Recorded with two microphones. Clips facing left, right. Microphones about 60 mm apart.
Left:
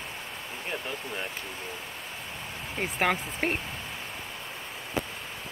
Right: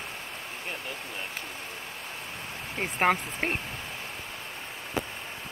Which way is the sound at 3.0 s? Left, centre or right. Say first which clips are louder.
Right 2 dB; right.